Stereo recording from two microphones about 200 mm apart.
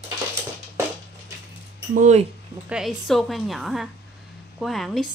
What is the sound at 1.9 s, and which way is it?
Speech, 35° right (ahead or behind).